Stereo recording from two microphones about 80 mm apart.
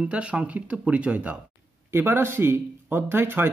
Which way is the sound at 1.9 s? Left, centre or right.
Right.